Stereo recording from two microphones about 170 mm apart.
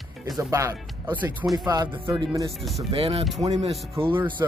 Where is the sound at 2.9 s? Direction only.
35° right (ahead or behind).